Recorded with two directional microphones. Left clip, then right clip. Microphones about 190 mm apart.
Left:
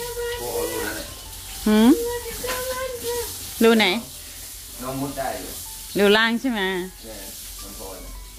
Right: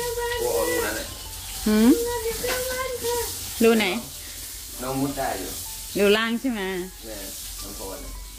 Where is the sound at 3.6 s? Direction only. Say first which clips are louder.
Left 3 dB; 25° left (ahead or behind).